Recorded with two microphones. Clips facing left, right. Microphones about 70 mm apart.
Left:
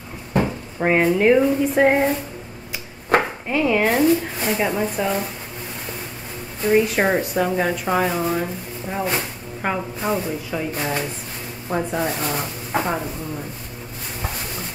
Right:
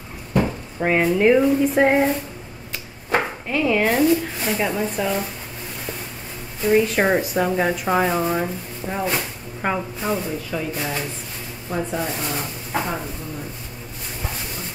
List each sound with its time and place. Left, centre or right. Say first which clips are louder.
0.4 s speech: even; centre
3.4 s chopping: left 1 dB; centre
6.6 s speech: even; centre
9.0 s speech: left 1 dB; centre
10.8 s chopping: left 2 dB; centre
12.3 s speech: left 2 dB; centre